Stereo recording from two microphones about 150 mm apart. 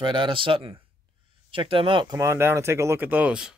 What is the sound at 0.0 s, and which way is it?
Speech, 35° right (ahead or behind).